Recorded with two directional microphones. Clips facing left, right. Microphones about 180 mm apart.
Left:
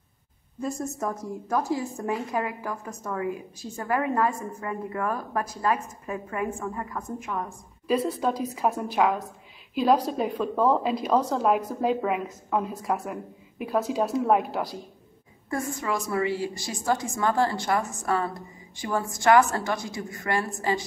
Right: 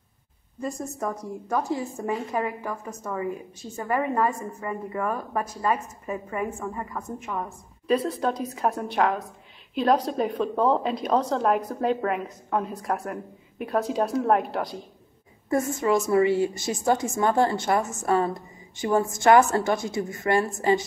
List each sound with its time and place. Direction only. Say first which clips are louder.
0.6 s a woman's voice: left 1 dB; centre (ahead or behind)
15.5 s a woman's voice: right 6 dB; 25° right (ahead or behind)